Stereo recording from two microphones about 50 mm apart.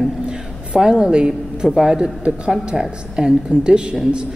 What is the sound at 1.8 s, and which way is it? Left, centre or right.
A woman's voice, centre.